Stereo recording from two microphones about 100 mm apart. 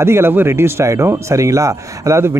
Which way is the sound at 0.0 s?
25° right (ahead or behind).